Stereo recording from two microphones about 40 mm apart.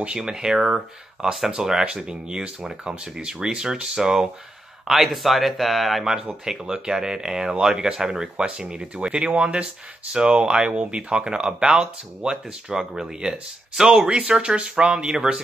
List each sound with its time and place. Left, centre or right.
0.2 s speech: centre
0.7 s speech: centre
6.0 s speech: centre
14.0 s speech: right